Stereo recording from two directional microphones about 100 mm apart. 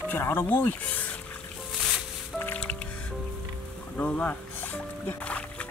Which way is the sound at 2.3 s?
20° left (ahead or behind).